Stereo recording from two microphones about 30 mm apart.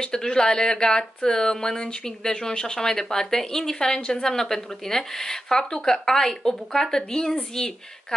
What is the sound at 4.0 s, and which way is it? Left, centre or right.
Speech, left.